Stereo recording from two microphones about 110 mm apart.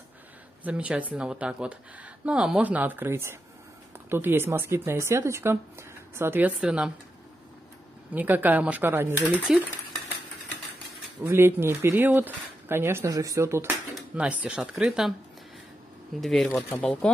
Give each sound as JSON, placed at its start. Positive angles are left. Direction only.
{"t": 0.7, "sound": "speech", "side_deg": -10}
{"t": 6.6, "sound": "speech", "side_deg": -10}
{"t": 8.1, "sound": "speech", "side_deg": -15}
{"t": 9.5, "sound": "speech", "side_deg": -5}
{"t": 11.2, "sound": "speech", "side_deg": -20}
{"t": 14.1, "sound": "speech", "side_deg": -10}
{"t": 16.2, "sound": "speech", "side_deg": 5}